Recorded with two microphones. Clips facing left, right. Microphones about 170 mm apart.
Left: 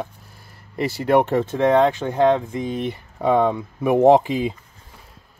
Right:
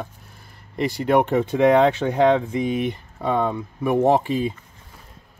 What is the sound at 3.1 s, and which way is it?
Speech, 15° left (ahead or behind).